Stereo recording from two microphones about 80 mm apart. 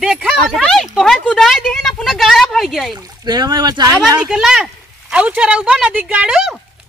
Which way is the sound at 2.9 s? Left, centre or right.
Right.